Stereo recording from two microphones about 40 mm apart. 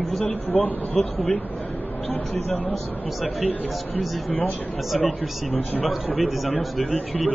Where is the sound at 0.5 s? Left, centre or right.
Left.